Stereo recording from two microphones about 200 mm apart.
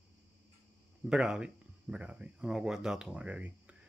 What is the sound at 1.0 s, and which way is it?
Speech, 5° right (ahead or behind).